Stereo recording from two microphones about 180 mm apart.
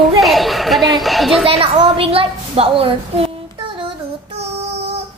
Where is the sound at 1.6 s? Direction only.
30° right (ahead or behind).